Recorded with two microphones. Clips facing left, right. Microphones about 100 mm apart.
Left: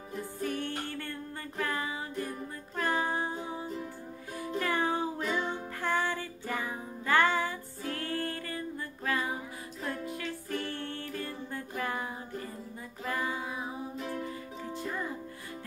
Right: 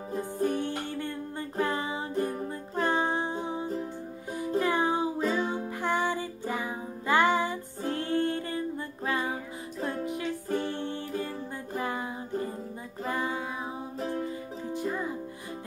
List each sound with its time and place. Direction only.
0.2 s music: 25° right (ahead or behind)
2.1 s music: 35° right (ahead or behind)
10.0 s music: 20° right (ahead or behind)
13.0 s female singing: 25° right (ahead or behind)
13.9 s music: 35° right (ahead or behind)
14.7 s music: 15° right (ahead or behind)